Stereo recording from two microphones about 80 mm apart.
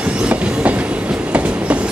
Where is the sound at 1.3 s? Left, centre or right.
Centre.